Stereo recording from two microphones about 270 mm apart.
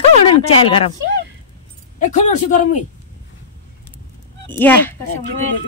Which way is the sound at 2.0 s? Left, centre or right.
Left.